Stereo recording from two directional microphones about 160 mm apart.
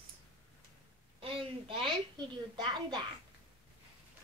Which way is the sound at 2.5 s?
25° right (ahead or behind).